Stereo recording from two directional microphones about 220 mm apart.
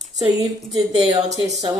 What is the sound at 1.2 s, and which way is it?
Speech, 15° right (ahead or behind).